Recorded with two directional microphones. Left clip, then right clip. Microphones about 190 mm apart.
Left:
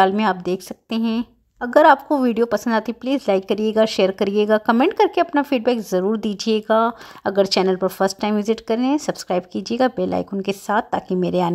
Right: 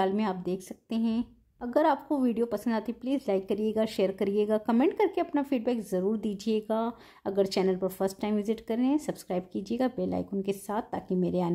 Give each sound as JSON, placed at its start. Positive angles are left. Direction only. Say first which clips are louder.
{"t": 0.0, "sound": "a woman's voice", "louder": "left 12 dB", "side_deg": 20}